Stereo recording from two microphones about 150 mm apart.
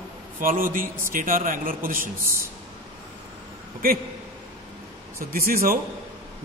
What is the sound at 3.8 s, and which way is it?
Speech, 75° right (ahead or behind).